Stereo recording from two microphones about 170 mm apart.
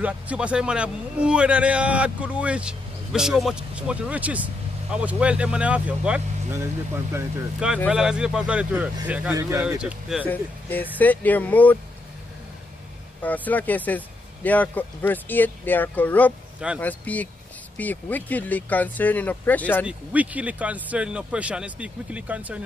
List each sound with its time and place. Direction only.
0.0 s a man's voice: 5° right (ahead or behind)
9.6 s speech: 5° right (ahead or behind)
10.2 s speech: 10° left (ahead or behind)
13.2 s speech: 10° left (ahead or behind)
16.5 s speech: 5° right (ahead or behind)
16.8 s speech: 10° left (ahead or behind)
19.9 s a man's voice: 10° right (ahead or behind)